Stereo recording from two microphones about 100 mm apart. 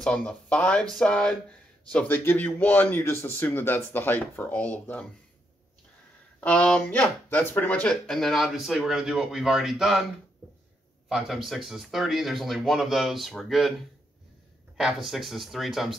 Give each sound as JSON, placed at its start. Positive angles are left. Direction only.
{"t": 0.0, "sound": "speech", "side_deg": 10}
{"t": 6.4, "sound": "speech", "side_deg": 10}
{"t": 10.4, "sound": "a sound", "side_deg": -25}
{"t": 11.1, "sound": "speech", "side_deg": 0}
{"t": 14.8, "sound": "speech", "side_deg": -5}